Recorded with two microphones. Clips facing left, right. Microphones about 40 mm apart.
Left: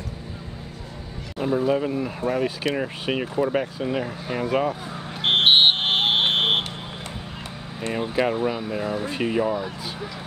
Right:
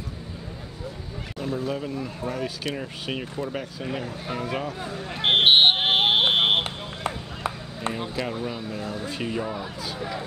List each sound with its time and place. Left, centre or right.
1.4 s speech: centre
2.2 s speech: centre
5.2 s buzzer: centre
6.6 s a sound: right
8.2 s speech: left